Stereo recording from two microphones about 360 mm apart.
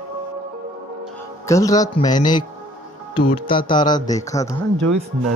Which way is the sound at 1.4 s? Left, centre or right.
Centre.